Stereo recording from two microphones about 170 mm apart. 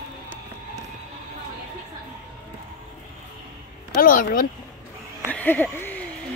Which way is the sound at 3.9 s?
55° left (ahead or behind).